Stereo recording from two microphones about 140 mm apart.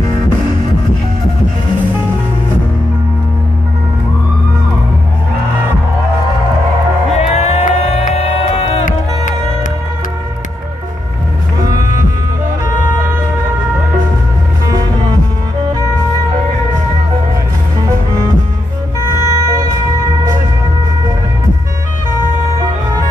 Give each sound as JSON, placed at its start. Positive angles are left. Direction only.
{"t": 7.2, "sound": "music", "side_deg": 50}
{"t": 8.8, "sound": "music", "side_deg": 70}
{"t": 18.9, "sound": "music", "side_deg": -20}